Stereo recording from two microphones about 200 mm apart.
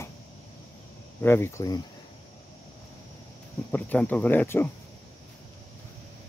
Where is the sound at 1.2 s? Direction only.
10° left (ahead or behind).